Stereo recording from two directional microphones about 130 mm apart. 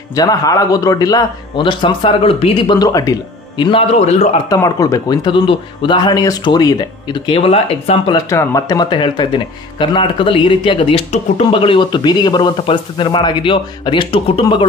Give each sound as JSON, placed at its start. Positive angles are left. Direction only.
{"t": 0.1, "sound": "speech", "side_deg": 30}
{"t": 3.9, "sound": "a man's voice", "side_deg": 60}
{"t": 4.6, "sound": "speech", "side_deg": 25}
{"t": 8.1, "sound": "speech", "side_deg": 25}